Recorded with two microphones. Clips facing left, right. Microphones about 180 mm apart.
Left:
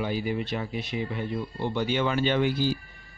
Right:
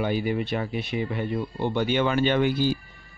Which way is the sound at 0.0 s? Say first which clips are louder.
Right 3 dB; 60° right (ahead or behind).